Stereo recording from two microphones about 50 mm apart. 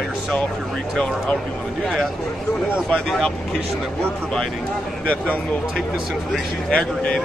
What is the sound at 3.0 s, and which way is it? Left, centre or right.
Speech, centre.